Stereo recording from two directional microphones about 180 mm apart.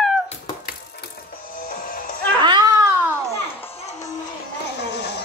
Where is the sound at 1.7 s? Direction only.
55° left (ahead or behind).